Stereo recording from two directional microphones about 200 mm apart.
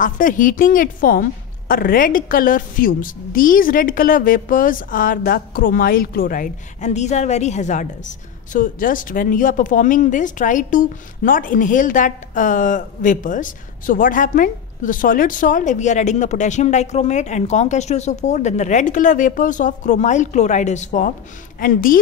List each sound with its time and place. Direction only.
0.0 s a woman's voice: 40° left (ahead or behind)